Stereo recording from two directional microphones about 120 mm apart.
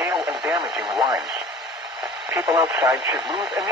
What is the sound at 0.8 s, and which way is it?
Speech, 35° right (ahead or behind).